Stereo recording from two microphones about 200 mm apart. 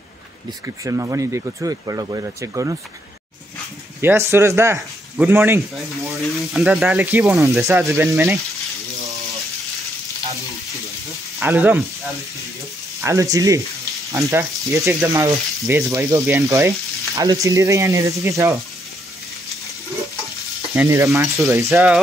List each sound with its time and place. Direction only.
0.8 s speech: 15° right (ahead or behind)
4.0 s speech: 10° right (ahead or behind)
11.4 s speech: 10° right (ahead or behind)
13.0 s speech: 15° right (ahead or behind)
20.7 s speech: 10° right (ahead or behind)